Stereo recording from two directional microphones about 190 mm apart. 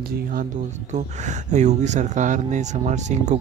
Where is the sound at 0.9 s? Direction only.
40° right (ahead or behind).